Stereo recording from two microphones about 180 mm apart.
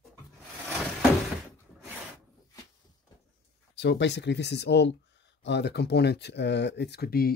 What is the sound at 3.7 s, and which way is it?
Speech, 75° left (ahead or behind).